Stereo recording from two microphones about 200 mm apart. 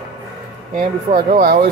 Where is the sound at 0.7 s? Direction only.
40° right (ahead or behind).